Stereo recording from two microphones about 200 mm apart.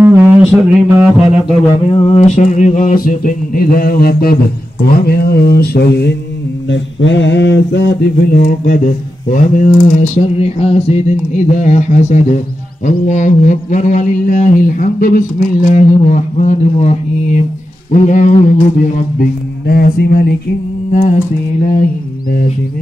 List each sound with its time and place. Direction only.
0.0 s a sound: 5° right (ahead or behind)
1.7 s mantra: 25° left (ahead or behind); by 4.4 s 50° left (ahead or behind)
4.8 s speech: 50° left (ahead or behind)
6.7 s mantra: 65° left (ahead or behind); by 21.2 s 35° left (ahead or behind)